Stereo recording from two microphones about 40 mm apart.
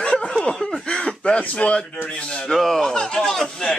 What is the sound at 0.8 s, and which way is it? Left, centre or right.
Speech, left.